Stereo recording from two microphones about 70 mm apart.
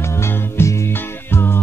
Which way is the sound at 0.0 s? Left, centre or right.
Left.